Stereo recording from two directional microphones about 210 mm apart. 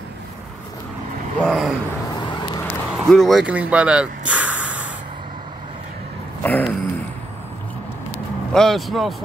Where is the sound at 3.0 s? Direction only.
Centre (ahead or behind).